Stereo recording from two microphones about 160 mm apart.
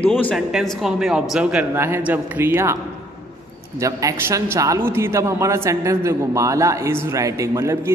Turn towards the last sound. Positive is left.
turn(degrees=-20)  # may be behind; listen again after turning